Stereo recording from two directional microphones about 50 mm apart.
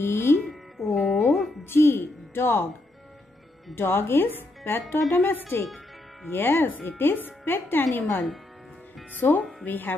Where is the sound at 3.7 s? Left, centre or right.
Left.